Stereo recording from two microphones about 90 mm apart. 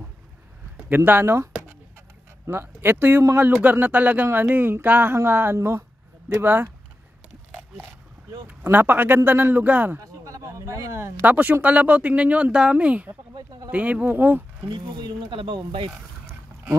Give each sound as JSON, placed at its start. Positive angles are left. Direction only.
{"t": 0.8, "sound": "speech", "side_deg": -20}
{"t": 8.5, "sound": "speech", "side_deg": -20}
{"t": 9.9, "sound": "a sound", "side_deg": -40}
{"t": 11.2, "sound": "speech", "side_deg": -20}
{"t": 14.7, "sound": "speech", "side_deg": -55}